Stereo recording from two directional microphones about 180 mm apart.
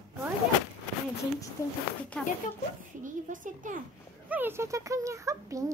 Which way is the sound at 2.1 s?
5° left (ahead or behind).